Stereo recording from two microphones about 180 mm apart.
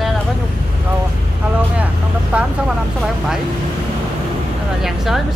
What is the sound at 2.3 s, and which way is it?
Speech, 5° right (ahead or behind).